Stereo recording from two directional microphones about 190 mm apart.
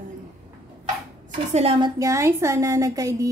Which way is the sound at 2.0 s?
15° right (ahead or behind).